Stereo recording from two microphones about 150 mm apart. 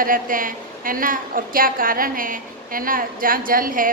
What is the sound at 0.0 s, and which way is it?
A woman's voice, 65° right (ahead or behind).